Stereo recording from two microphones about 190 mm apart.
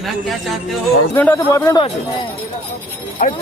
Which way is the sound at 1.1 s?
10° left (ahead or behind).